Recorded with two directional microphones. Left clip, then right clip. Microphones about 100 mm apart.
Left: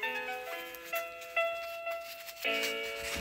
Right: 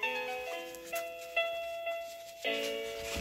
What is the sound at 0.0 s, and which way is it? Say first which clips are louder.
Music: right 1 dB; 45° right (ahead or behind).